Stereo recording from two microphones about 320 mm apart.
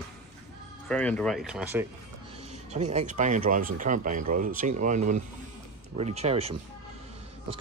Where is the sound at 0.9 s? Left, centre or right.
Centre.